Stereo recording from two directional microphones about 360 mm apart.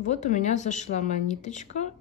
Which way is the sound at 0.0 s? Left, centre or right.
Centre.